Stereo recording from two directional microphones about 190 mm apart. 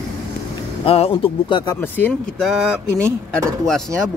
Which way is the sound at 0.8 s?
30° left (ahead or behind).